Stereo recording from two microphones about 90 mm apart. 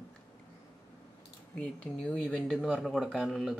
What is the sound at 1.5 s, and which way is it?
Speech, 15° left (ahead or behind).